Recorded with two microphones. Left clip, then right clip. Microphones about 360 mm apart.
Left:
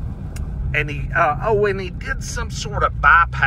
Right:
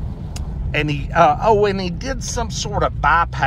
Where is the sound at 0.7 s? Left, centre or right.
Centre.